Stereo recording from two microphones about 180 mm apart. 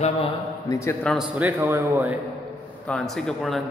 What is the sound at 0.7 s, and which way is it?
Speech, 15° left (ahead or behind).